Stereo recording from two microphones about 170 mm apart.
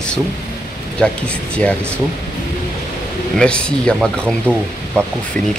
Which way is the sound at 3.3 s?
5° left (ahead or behind).